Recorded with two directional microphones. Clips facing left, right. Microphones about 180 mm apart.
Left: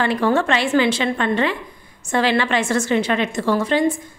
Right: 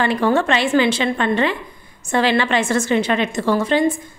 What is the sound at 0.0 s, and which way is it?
A woman's voice, 20° right (ahead or behind).